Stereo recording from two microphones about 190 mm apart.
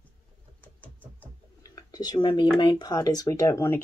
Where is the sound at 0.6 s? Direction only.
10° left (ahead or behind).